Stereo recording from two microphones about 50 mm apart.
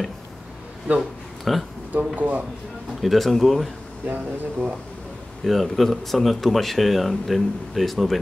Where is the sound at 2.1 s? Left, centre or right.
Right.